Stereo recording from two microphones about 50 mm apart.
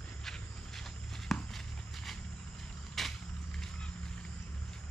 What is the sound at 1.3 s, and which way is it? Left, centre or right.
Walk, centre.